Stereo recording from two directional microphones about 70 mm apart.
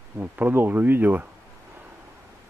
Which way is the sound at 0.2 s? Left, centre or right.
Right.